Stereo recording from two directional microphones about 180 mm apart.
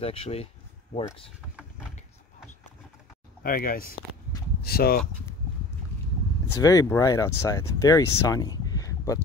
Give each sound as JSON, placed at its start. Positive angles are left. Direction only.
{"t": 0.0, "sound": "speech", "side_deg": 35}
{"t": 3.4, "sound": "speech", "side_deg": 55}
{"t": 6.5, "sound": "speech", "side_deg": 20}